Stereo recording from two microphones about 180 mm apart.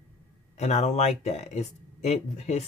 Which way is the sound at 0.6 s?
40° left (ahead or behind).